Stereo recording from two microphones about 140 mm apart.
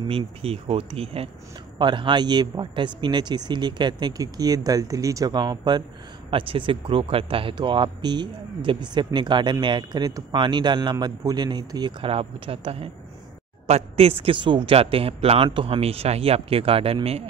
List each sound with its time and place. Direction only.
0.0 s speech: 45° right (ahead or behind)